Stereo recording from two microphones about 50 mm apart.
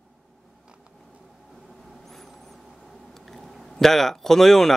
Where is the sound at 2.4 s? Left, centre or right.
Centre.